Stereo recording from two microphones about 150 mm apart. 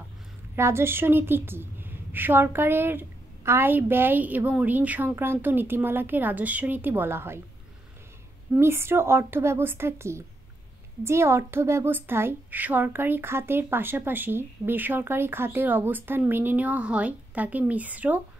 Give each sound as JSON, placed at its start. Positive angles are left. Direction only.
{"t": 0.6, "sound": "a woman's voice", "side_deg": -15}
{"t": 8.5, "sound": "a woman's voice", "side_deg": -15}